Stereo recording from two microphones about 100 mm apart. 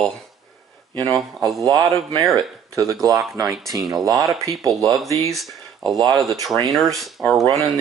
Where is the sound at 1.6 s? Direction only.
40° right (ahead or behind).